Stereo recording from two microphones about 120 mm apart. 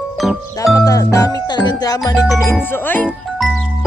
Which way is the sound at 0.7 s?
25° left (ahead or behind).